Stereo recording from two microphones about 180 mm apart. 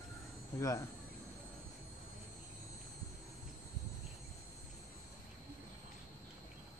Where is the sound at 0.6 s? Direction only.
20° left (ahead or behind).